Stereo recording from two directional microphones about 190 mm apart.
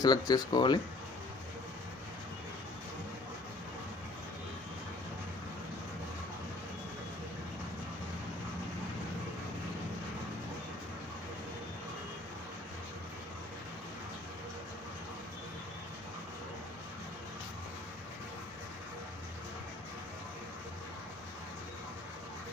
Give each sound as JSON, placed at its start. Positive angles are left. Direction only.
{"t": 0.0, "sound": "speech", "side_deg": 20}